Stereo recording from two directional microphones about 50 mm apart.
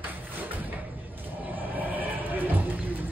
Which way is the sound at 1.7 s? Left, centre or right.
Right.